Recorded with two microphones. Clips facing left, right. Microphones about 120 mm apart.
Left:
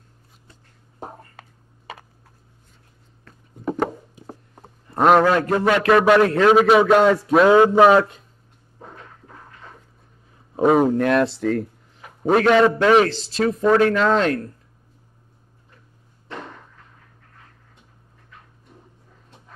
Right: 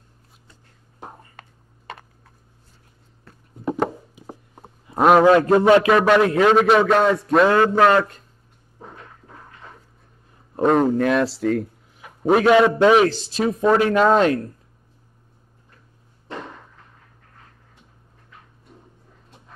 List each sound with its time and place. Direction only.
3.3 s a sound: 5° right (ahead or behind)
5.2 s a man's voice: 20° right (ahead or behind)
5.9 s a man's voice: centre (ahead or behind)
7.5 s a man's voice: 15° left (ahead or behind)
10.5 s speech: 5° left (ahead or behind); by 14.4 s 15° right (ahead or behind)